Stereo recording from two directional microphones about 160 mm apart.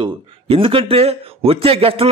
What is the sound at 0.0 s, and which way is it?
A man's voice, 35° right (ahead or behind).